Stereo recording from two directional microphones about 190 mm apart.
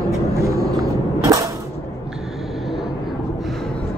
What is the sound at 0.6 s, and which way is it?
Speech, centre (ahead or behind).